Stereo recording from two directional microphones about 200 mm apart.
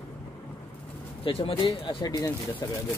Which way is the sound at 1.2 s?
25° left (ahead or behind).